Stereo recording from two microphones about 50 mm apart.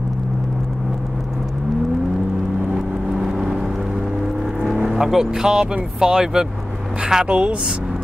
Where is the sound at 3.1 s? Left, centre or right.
Centre.